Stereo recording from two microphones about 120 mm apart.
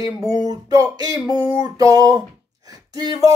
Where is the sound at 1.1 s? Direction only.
35° left (ahead or behind).